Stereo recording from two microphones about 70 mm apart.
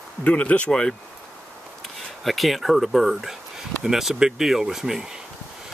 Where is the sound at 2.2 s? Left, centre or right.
Centre.